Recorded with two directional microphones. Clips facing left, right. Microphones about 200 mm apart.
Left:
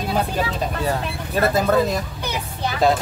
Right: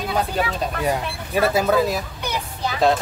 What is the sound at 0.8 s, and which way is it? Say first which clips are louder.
Speech: even; 10° right (ahead or behind).